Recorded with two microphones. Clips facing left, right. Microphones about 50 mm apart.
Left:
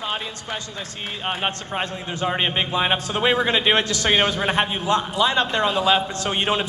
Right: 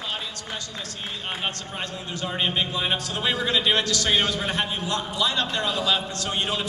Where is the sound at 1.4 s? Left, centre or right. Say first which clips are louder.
Left 5 dB; left.